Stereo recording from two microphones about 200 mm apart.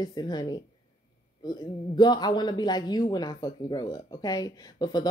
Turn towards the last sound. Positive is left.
turn(degrees=20)  # may be behind; listen again after turning